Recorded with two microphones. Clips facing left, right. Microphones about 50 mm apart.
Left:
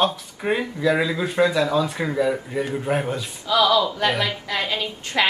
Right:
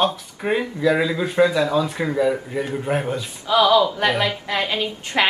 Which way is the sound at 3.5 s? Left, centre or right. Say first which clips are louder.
Right 3 dB; right.